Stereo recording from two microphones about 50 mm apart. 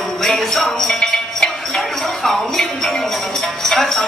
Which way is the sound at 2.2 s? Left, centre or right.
Centre.